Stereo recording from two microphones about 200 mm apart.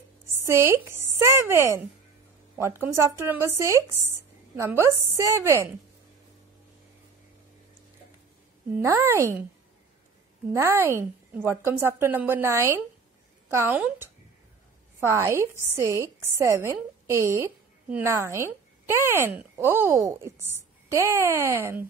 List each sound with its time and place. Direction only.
0.4 s a woman's voice: 15° right (ahead or behind)
8.6 s a woman's voice: 10° right (ahead or behind)
10.5 s a woman's voice: 10° right (ahead or behind)